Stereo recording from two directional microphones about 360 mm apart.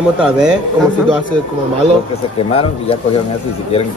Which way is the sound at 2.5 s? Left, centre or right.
Centre.